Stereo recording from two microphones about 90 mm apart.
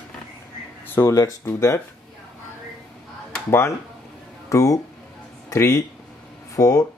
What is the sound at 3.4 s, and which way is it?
Speech, 30° left (ahead or behind).